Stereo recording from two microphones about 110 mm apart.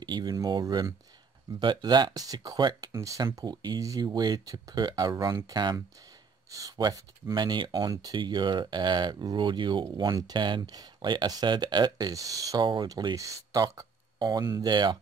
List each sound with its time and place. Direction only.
0.0 s speech: 40° right (ahead or behind)